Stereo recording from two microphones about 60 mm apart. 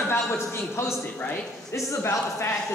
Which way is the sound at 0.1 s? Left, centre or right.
Left.